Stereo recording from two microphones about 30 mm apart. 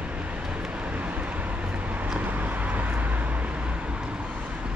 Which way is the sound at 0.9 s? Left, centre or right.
Right.